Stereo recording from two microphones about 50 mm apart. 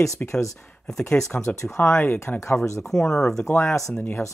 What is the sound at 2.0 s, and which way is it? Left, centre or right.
Speech, left.